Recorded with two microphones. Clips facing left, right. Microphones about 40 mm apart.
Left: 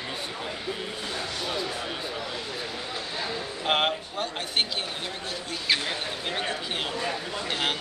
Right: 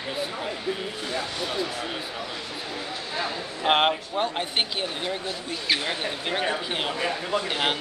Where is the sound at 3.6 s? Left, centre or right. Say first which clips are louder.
Right 4 dB; centre.